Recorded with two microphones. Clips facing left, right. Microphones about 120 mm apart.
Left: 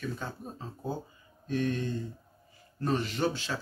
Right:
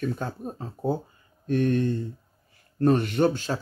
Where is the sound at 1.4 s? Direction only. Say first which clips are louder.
Right 7 dB; 55° right (ahead or behind).